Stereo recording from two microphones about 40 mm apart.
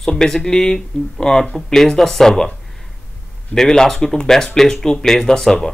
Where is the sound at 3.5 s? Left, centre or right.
Centre.